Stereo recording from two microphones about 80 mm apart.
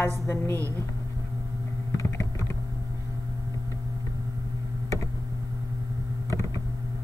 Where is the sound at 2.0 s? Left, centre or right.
Left.